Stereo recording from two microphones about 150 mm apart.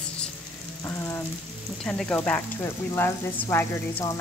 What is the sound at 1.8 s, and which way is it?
Speech, 5° left (ahead or behind).